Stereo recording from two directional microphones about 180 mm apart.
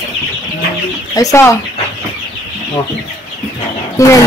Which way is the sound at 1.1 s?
15° left (ahead or behind).